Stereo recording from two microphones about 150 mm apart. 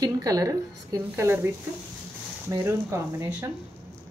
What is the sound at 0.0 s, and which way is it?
Speech, 25° right (ahead or behind).